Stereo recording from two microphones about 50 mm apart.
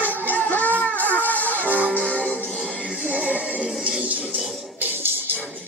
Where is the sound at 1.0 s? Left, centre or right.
Left.